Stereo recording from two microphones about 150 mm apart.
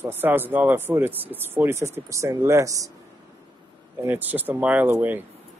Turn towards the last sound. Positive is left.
turn(degrees=-15)  # may be behind; listen again after turning